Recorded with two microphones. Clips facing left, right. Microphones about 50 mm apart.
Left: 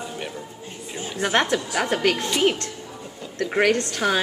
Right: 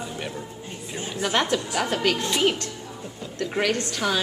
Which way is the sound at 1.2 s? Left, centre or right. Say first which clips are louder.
Left 3 dB; left.